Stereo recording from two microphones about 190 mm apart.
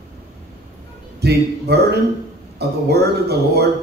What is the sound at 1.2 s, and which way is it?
A man's voice, 60° right (ahead or behind).